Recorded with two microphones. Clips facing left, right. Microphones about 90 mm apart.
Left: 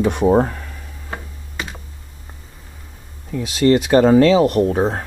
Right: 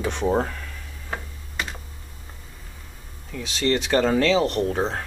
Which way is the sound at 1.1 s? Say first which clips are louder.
Left 1 dB; 5° left (ahead or behind).